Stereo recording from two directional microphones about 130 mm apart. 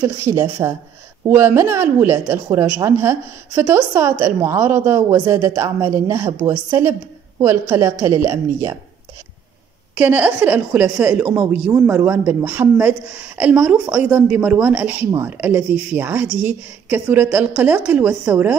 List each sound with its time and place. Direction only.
0.0 s a woman's voice: 20° right (ahead or behind)
9.9 s a woman's voice: 10° right (ahead or behind)